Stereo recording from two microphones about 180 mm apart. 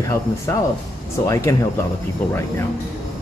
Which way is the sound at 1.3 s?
15° left (ahead or behind).